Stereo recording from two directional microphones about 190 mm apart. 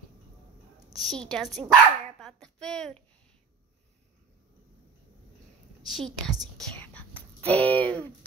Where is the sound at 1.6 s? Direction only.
15° right (ahead or behind).